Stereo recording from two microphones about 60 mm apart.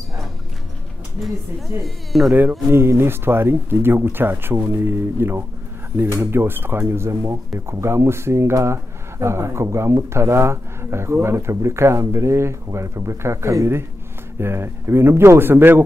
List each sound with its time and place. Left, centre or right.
1.8 s speech: centre
2.7 s speech: right
14.4 s speech: right